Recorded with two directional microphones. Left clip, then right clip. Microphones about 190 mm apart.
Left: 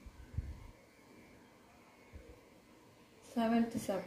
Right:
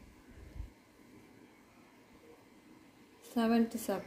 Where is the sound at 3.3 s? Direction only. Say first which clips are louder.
Right 2 dB; 40° right (ahead or behind).